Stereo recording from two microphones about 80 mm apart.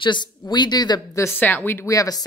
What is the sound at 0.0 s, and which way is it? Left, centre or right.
Speech, left.